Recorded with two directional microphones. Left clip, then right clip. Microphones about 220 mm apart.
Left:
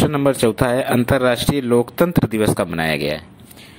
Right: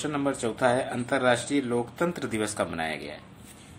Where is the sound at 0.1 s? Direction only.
35° left (ahead or behind).